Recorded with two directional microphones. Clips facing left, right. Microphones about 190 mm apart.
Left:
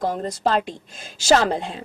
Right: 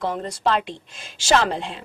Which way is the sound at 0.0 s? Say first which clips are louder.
Left 1 dB; 35° left (ahead or behind).